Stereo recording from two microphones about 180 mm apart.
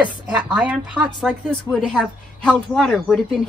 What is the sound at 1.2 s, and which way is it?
Speech, centre (ahead or behind).